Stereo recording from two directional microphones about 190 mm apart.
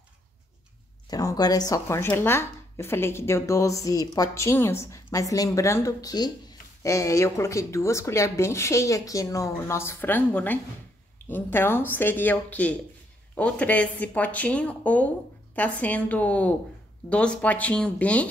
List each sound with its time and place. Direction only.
1.1 s speech: 20° left (ahead or behind)